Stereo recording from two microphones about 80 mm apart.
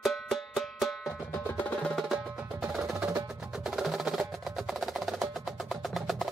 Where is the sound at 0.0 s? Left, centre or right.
Centre.